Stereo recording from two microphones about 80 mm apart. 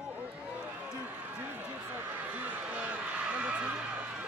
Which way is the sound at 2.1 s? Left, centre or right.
Right.